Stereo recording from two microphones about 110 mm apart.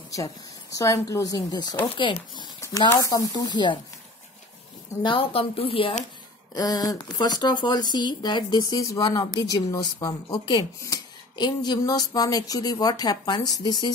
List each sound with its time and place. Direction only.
0.1 s speech: 30° left (ahead or behind)
2.0 s speech: 50° left (ahead or behind)
2.9 s speech: 30° left (ahead or behind)
5.0 s speech: 55° left (ahead or behind)
6.5 s speech: 35° left (ahead or behind)